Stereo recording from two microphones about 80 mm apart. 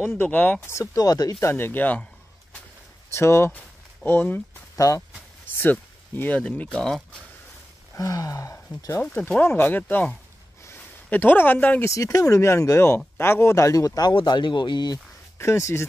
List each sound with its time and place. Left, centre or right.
0.2 s speech: left
0.9 s speech: left
1.4 s speech: left
3.1 s speech: left
3.5 s a sound: left
4.7 s speech: left
5.6 s speech: left
7.9 s speech: left
9.0 s speech: left
11.1 s speech: left
11.8 s speech: left
14.1 s speech: left
15.3 s speech: left